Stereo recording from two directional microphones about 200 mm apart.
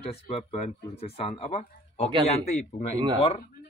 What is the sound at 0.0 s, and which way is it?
Speech, 30° left (ahead or behind).